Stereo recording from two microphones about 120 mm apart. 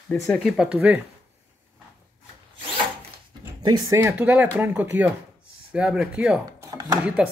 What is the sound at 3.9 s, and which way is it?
Speech, 20° right (ahead or behind).